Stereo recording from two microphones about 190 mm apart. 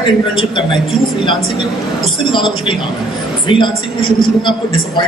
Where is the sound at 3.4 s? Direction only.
25° left (ahead or behind).